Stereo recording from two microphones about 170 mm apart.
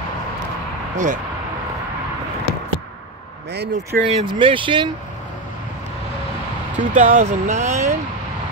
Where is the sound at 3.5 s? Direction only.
75° right (ahead or behind).